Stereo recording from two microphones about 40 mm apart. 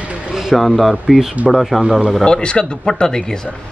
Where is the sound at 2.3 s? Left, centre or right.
Left.